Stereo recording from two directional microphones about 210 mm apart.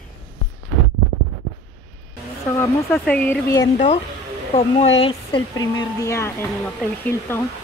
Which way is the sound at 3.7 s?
30° left (ahead or behind).